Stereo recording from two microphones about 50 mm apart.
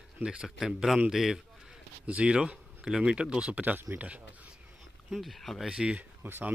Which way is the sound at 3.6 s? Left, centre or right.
Right.